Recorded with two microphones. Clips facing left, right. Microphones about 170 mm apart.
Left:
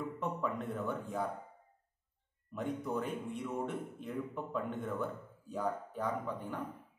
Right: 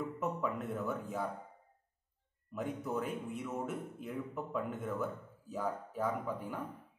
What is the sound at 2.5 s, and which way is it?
A man's voice, centre (ahead or behind).